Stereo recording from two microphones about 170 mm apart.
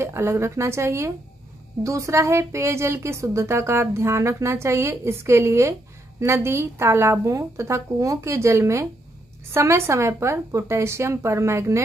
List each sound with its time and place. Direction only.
0.0 s speech: 15° right (ahead or behind)